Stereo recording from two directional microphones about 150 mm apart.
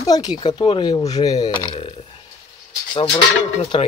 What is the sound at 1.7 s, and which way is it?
Speech, 40° left (ahead or behind).